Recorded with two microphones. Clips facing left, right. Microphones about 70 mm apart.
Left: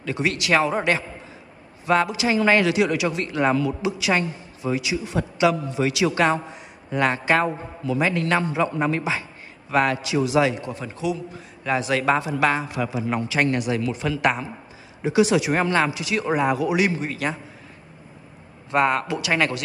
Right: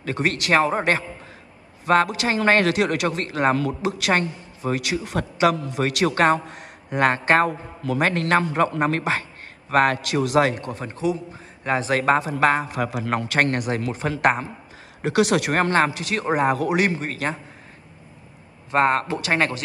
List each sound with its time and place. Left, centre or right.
0.0 s a man's voice: right
1.9 s a man's voice: right
15.0 s a man's voice: right
18.7 s a man's voice: right